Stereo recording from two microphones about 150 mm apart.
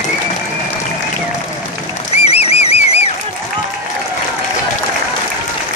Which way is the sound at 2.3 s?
45° left (ahead or behind).